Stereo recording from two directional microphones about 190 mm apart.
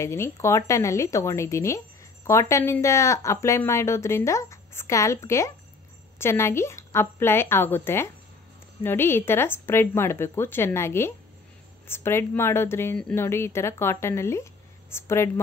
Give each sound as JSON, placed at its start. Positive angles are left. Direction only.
{"t": 0.0, "sound": "speech", "side_deg": 15}